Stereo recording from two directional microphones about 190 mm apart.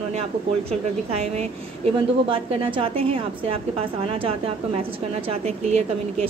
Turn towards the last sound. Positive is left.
turn(degrees=-35)  # may be behind; listen again after turning